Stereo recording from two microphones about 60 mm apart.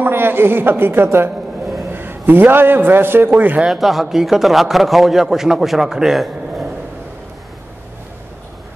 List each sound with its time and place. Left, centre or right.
0.0 s a woman's voice: right
3.6 s a man's voice: centre